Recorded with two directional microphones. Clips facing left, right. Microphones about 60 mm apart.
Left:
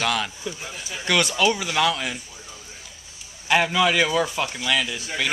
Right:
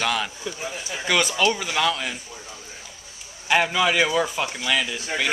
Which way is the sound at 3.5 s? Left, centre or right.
Centre.